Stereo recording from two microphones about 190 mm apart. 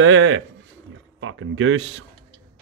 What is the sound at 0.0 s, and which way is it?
Speech, 90° right.